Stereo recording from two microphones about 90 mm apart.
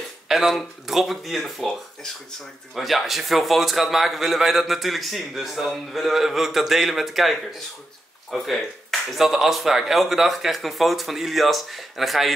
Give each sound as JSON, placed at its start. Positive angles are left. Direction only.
{"t": 0.3, "sound": "a man's voice", "side_deg": 0}